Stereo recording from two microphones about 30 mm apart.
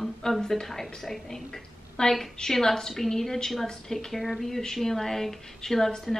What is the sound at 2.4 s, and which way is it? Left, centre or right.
A woman's voice, centre.